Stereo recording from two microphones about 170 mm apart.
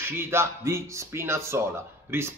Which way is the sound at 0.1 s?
15° right (ahead or behind).